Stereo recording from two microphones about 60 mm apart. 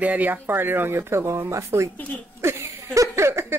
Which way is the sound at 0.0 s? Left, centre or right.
Right.